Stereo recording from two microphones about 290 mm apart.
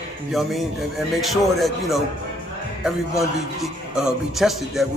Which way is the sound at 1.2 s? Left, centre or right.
Centre.